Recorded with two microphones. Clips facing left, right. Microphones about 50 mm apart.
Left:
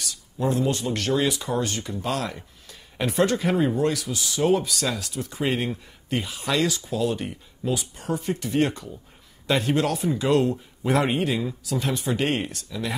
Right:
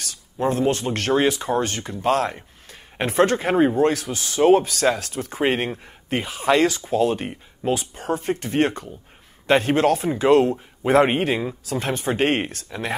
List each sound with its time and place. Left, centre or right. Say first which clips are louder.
0.0 s speech: right 3 dB; right